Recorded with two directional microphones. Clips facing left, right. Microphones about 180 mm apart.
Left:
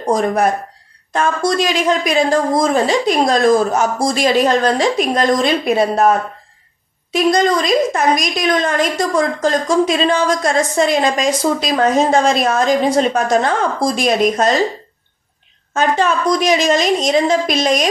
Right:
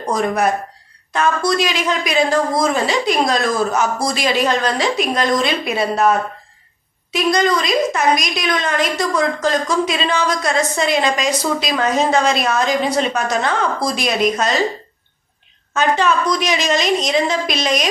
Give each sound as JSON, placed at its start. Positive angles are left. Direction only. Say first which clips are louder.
{"t": 0.1, "sound": "a woman's voice", "louder": "left 3 dB", "side_deg": 45}
{"t": 15.7, "sound": "a woman's voice", "louder": "left 1 dB", "side_deg": 50}